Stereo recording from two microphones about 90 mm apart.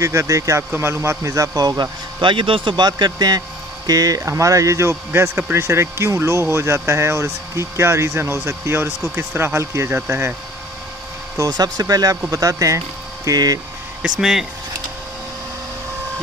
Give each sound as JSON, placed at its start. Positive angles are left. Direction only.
{"t": 0.0, "sound": "speech", "side_deg": -35}
{"t": 2.8, "sound": "speech", "side_deg": -50}
{"t": 11.3, "sound": "speech", "side_deg": -45}
{"t": 14.0, "sound": "speech", "side_deg": -5}